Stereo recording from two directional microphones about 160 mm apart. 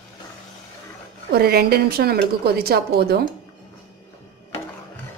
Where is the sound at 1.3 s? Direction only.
80° right.